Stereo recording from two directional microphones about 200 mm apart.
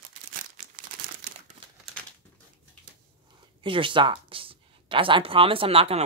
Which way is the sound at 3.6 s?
25° right (ahead or behind).